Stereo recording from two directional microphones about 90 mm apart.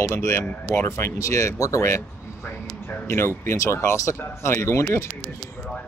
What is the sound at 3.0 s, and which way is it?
Speech, 25° left (ahead or behind).